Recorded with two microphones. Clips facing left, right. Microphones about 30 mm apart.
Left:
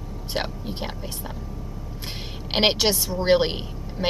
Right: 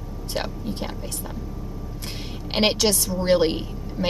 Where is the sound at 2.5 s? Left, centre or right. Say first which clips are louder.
Even; centre.